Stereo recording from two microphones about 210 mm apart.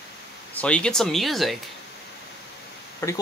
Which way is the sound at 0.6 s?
5° left (ahead or behind).